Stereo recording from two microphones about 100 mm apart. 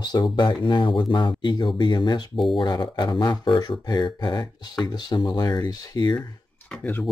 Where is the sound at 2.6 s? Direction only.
45° left (ahead or behind).